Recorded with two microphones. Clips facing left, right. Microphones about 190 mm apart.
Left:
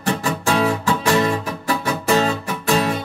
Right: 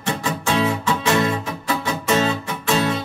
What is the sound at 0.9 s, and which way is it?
Music, 20° right (ahead or behind).